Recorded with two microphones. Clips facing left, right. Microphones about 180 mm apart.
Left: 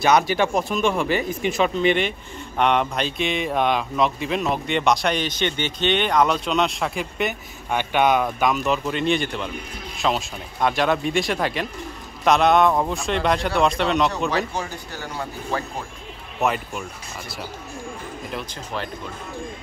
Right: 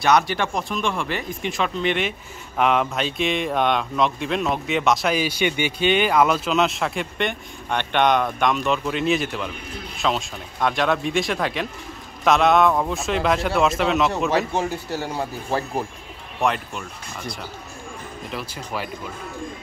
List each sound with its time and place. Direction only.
0.0 s speech: centre (ahead or behind)
14.5 s speech: 30° right (ahead or behind)
16.3 s speech: 5° left (ahead or behind)
18.3 s speech: 10° right (ahead or behind)